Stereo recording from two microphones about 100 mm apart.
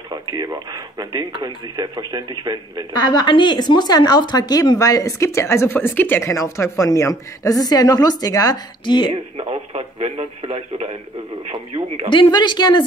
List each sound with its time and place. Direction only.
0.1 s speech: 45° right (ahead or behind)
3.1 s speech: 50° left (ahead or behind); by 6.3 s 20° left (ahead or behind)
6.3 s speech: 35° left (ahead or behind)
8.8 s speech: 55° left (ahead or behind)
9.1 s speech: 75° right (ahead or behind)
12.1 s speech: 50° left (ahead or behind)